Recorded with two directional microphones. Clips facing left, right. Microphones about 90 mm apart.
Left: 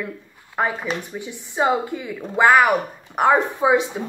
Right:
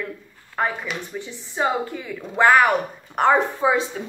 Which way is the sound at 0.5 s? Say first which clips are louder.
Left 1 dB; 15° left (ahead or behind).